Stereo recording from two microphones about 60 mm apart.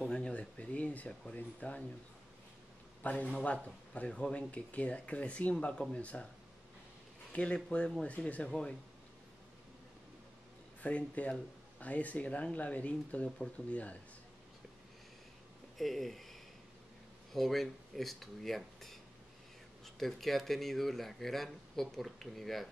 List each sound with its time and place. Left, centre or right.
0.0 s a sound: centre
1.3 s speech: left
3.0 s speech: left
7.3 s speech: centre
10.8 s speech: left
15.8 s speech: centre